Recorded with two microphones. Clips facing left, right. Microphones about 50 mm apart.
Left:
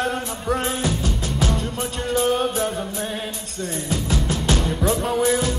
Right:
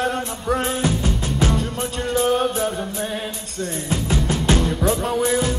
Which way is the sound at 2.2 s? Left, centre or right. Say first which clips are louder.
Right 1 dB; centre.